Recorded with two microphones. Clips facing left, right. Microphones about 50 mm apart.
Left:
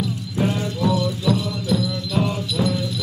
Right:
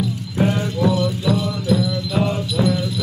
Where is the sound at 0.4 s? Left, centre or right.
Right.